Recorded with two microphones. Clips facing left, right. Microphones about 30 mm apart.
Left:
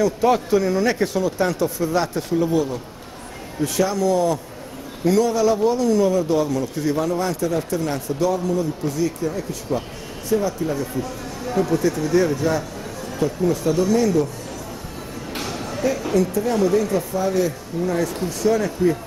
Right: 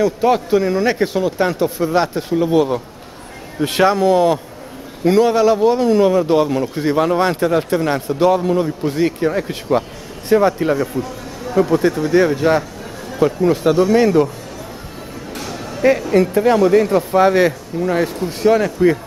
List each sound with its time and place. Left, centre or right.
0.0 s speech: right
2.5 s a man's voice: right
11.7 s a man's voice: right
15.4 s a sound: centre
16.3 s a man's voice: right